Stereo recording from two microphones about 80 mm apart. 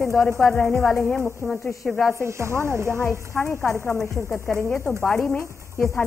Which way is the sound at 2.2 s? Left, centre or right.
Right.